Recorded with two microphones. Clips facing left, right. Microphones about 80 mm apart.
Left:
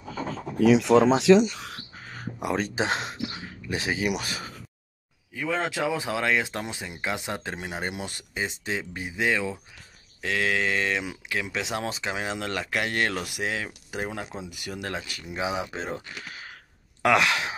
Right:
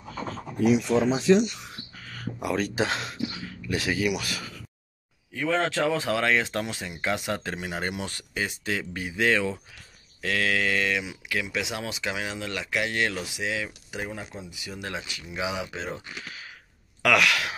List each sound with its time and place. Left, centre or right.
0.6 s speech: left
2.0 s a sound: left
3.6 s speech: left
5.3 s speech: centre; by 13.5 s left
13.5 s speech: left
14.5 s speech: left